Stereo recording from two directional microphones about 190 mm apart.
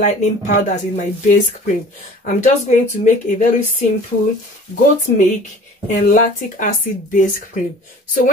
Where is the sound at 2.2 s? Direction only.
40° left (ahead or behind).